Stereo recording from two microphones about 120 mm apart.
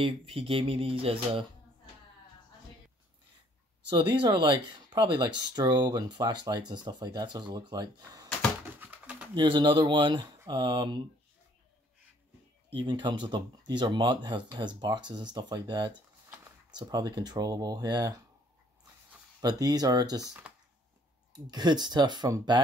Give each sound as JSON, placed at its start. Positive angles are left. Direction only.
{"t": 0.0, "sound": "speech", "side_deg": -50}
{"t": 3.9, "sound": "speech", "side_deg": -45}
{"t": 8.7, "sound": "a sound", "side_deg": -10}
{"t": 9.3, "sound": "speech", "side_deg": -40}
{"t": 12.7, "sound": "speech", "side_deg": -40}
{"t": 19.4, "sound": "speech", "side_deg": -35}
{"t": 21.3, "sound": "speech", "side_deg": -35}